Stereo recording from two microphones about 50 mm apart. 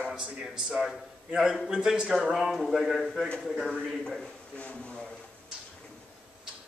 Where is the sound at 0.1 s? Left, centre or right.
Centre.